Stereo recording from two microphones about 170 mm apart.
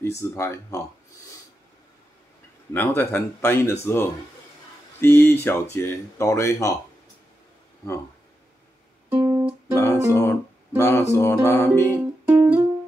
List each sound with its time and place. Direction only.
0.0 s speech: 15° left (ahead or behind)
2.7 s speech: 10° left (ahead or behind)
9.1 s guitar: 20° right (ahead or behind)
9.8 s music: 15° left (ahead or behind)
10.8 s speech: 15° left (ahead or behind)
11.8 s music: 15° right (ahead or behind)